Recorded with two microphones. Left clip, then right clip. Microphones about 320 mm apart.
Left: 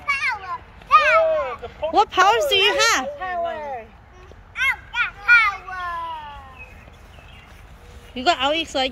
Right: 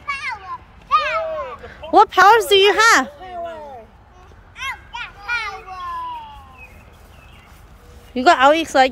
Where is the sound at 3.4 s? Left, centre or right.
Left.